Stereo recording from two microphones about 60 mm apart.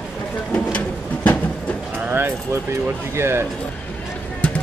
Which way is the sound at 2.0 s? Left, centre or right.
Right.